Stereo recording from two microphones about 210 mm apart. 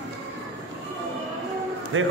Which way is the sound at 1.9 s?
70° right (ahead or behind).